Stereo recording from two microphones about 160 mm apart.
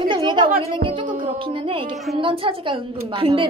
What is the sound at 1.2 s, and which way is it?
A woman's voice, 35° right (ahead or behind).